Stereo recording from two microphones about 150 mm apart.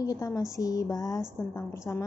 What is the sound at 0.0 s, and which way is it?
Speech, 25° left (ahead or behind).